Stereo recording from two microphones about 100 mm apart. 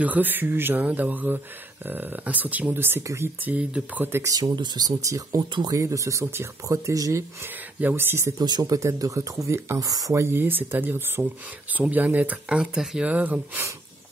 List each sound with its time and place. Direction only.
0.0 s speech: 15° right (ahead or behind)
3.4 s speech: 15° right (ahead or behind)
4.3 s speech: 45° right (ahead or behind)
5.5 s speech: 50° right (ahead or behind)
5.8 s speech: 30° right (ahead or behind)
7.8 s speech: 20° right (ahead or behind)
8.4 s speech: 45° right (ahead or behind); by 13.4 s 15° right (ahead or behind)